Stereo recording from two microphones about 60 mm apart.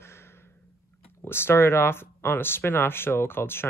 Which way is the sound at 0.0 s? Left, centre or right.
Left.